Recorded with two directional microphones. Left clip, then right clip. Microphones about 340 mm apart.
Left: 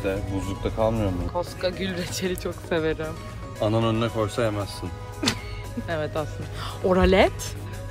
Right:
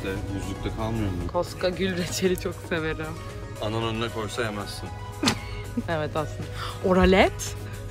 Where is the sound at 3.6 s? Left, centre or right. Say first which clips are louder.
Left 5 dB; left.